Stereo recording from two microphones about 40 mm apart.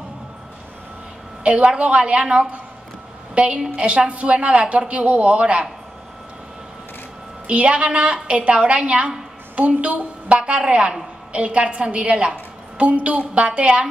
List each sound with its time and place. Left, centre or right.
1.4 s a woman's voice: right
7.4 s speech: right